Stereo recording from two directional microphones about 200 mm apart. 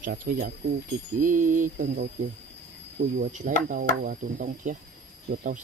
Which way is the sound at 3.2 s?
40° right (ahead or behind).